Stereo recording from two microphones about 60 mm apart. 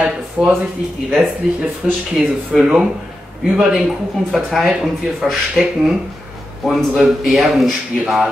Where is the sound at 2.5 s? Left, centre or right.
Centre.